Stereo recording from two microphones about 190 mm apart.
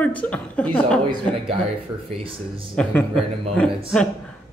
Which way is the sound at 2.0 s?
30° right (ahead or behind).